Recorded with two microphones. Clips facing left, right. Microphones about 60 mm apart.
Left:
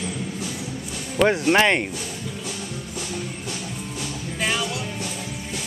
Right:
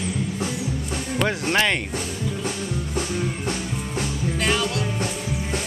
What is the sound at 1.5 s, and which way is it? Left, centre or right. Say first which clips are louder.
Speech: left 2 dB; centre.